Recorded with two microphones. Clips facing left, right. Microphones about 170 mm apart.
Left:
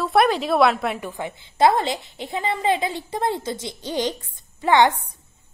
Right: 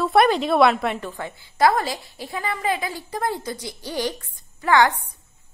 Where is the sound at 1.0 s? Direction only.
15° left (ahead or behind).